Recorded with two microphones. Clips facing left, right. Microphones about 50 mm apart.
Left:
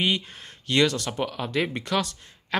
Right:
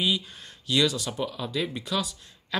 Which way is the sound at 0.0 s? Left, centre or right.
Left.